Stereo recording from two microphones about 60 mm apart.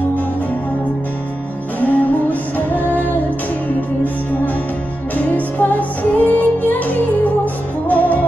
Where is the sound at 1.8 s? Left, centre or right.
Left.